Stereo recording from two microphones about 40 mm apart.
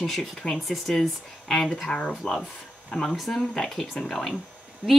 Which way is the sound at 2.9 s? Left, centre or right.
Left.